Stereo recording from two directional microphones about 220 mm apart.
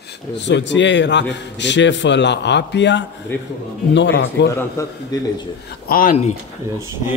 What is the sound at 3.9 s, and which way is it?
Speech, 55° left (ahead or behind).